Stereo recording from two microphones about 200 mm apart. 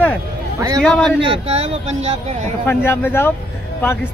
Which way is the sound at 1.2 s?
30° right (ahead or behind).